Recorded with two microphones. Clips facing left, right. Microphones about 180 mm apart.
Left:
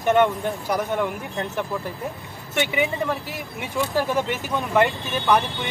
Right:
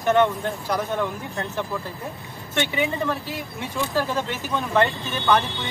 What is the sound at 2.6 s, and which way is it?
Speech, 15° left (ahead or behind).